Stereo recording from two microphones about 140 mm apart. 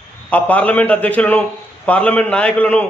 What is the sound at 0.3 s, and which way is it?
A man's voice, 10° left (ahead or behind).